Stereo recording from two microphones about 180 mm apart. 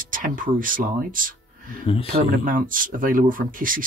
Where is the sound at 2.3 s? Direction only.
50° right (ahead or behind).